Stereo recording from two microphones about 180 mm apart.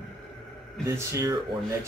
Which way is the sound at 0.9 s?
15° right (ahead or behind).